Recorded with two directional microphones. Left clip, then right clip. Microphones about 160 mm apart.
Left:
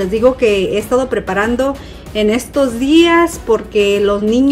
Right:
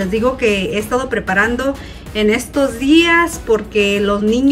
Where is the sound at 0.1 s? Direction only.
15° left (ahead or behind).